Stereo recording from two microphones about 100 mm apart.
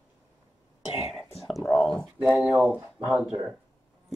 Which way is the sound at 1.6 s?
5° left (ahead or behind).